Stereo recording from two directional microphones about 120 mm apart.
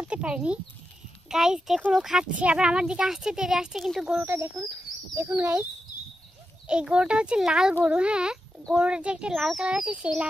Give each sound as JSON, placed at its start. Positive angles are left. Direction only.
{"t": 0.0, "sound": "a child's voice", "side_deg": -10}
{"t": 4.2, "sound": "a child's voice", "side_deg": -20}
{"t": 6.7, "sound": "a child's voice", "side_deg": -10}